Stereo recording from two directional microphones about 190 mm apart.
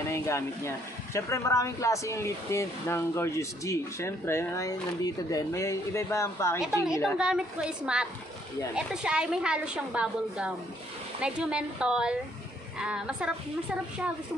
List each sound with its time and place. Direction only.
0.1 s speech: 15° left (ahead or behind)
7.2 s a woman's voice: 5° right (ahead or behind)